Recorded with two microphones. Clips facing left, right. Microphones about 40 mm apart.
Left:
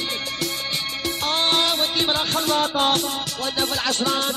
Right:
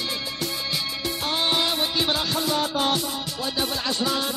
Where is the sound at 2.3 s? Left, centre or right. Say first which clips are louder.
Left 3 dB; left.